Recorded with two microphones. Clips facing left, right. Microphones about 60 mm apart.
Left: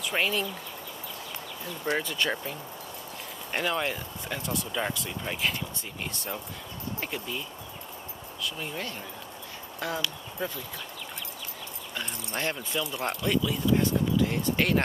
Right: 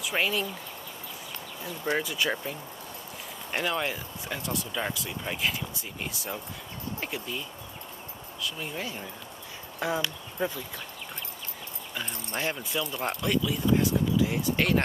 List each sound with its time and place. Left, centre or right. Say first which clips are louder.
0.0 s speech: even; centre
1.9 s speech: even; centre
3.5 s speech: even; centre
12.3 s speech: even; centre